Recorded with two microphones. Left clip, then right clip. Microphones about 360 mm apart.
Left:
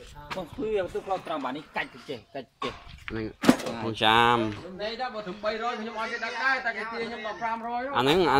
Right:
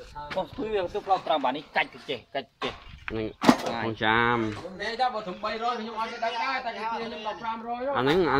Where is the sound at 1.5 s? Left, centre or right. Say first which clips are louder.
Right 6 dB; right.